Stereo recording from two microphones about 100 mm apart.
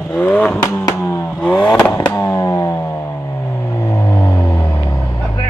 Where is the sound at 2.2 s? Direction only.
30° left (ahead or behind).